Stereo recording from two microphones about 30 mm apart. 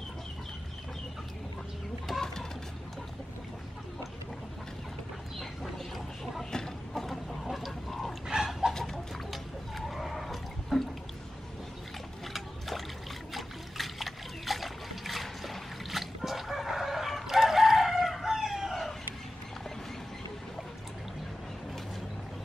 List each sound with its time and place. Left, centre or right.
2.1 s chicken: centre
6.5 s chicken: left
7.0 s chicken: centre
7.4 s a sound: centre
8.4 s chicken: centre
9.3 s a sound: centre
12.3 s boat: centre
13.3 s trickle: centre
18.3 s chicken: centre